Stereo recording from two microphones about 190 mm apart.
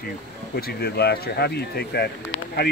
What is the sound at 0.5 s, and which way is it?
Speech, 55° left (ahead or behind).